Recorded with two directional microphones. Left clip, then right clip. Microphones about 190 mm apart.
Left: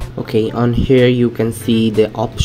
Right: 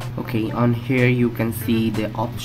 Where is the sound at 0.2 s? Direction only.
20° left (ahead or behind).